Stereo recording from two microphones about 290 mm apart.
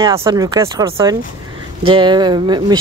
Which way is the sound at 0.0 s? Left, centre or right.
Centre.